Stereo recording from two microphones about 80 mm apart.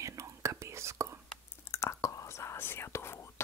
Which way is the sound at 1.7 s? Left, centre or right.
Left.